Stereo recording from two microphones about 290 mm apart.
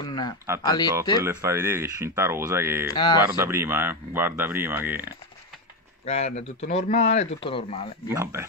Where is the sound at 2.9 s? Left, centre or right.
Centre.